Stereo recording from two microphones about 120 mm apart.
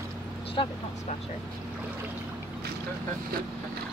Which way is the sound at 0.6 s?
45° left (ahead or behind).